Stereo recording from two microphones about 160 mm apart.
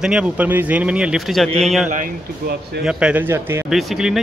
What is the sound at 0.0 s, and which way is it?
A man's voice, 5° right (ahead or behind).